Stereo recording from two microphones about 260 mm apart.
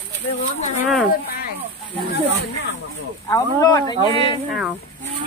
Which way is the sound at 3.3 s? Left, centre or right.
Centre.